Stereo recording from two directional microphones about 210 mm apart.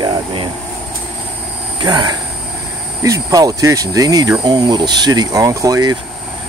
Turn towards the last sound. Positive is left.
turn(degrees=-20)  # may be behind; listen again after turning